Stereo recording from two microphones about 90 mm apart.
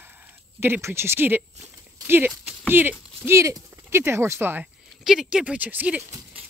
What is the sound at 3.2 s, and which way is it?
Speech, 35° right (ahead or behind).